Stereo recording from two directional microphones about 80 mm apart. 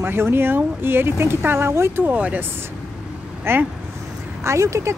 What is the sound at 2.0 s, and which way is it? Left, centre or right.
Speech, centre.